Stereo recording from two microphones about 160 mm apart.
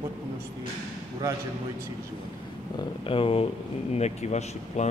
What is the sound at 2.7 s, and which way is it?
Speech, 35° left (ahead or behind).